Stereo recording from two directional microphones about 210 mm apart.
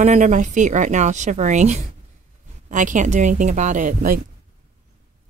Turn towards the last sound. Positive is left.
turn(degrees=-40)  # may be behind; listen again after turning